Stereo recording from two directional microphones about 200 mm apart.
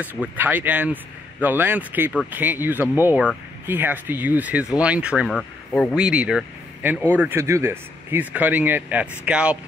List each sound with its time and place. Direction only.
0.4 s speech: 10° right (ahead or behind)
5.3 s speech: 5° left (ahead or behind)
5.9 s speech: 5° right (ahead or behind)